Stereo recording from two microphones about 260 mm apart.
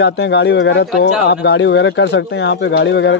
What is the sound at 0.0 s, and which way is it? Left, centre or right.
Speech, left.